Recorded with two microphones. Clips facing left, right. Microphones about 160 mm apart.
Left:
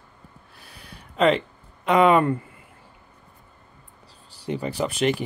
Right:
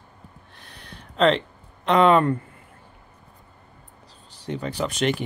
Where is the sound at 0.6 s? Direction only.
5° left (ahead or behind).